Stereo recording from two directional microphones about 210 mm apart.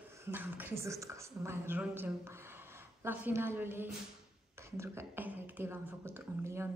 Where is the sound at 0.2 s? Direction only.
10° right (ahead or behind).